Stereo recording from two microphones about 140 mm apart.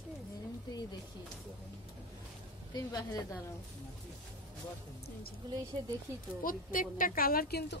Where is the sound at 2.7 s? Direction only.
25° left (ahead or behind).